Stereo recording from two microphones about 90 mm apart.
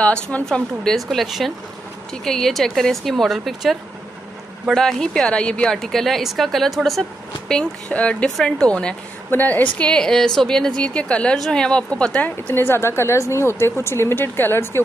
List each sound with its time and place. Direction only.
0.0 s a woman's voice: 15° left (ahead or behind)
4.7 s a woman's voice: 5° left (ahead or behind); by 14.8 s 25° left (ahead or behind)